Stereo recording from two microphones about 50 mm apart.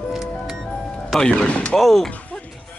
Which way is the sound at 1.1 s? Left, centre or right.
Centre.